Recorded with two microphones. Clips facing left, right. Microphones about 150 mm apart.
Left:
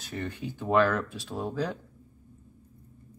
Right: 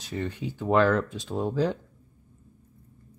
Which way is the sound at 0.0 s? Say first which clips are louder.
Right 3 dB; 10° right (ahead or behind).